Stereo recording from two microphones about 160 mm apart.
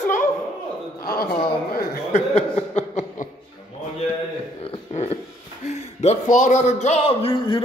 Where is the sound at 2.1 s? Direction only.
45° left (ahead or behind).